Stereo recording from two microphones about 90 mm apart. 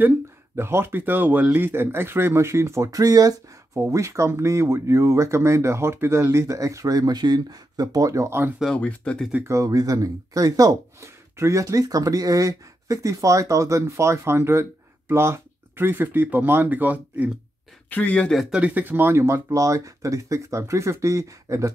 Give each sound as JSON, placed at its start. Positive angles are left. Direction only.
{"t": 0.6, "sound": "speech", "side_deg": -25}
{"t": 8.7, "sound": "speech", "side_deg": 15}
{"t": 9.5, "sound": "speech", "side_deg": -40}
{"t": 17.8, "sound": "speech", "side_deg": 20}
{"t": 18.5, "sound": "speech", "side_deg": -15}